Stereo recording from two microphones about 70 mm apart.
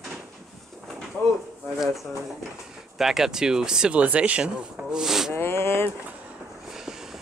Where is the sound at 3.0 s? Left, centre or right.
Centre.